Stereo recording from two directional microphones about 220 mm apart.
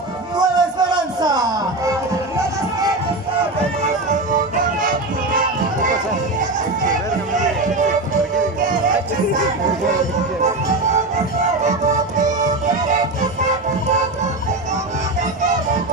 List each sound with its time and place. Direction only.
0.4 s a sound: 20° right (ahead or behind)
4.1 s music: 40° right (ahead or behind)
11.6 s music: 35° right (ahead or behind)